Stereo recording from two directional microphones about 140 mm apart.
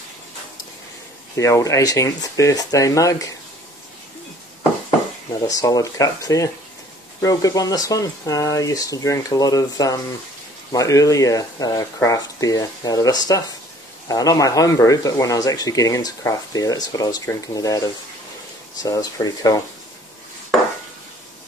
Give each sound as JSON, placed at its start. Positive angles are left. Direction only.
{"t": 1.3, "sound": "speech", "side_deg": 20}
{"t": 5.5, "sound": "speech", "side_deg": 25}